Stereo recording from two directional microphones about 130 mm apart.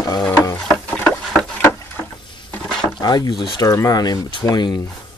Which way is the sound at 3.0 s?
30° left (ahead or behind).